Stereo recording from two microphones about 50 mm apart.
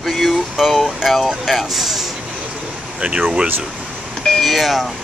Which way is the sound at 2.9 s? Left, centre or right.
Right.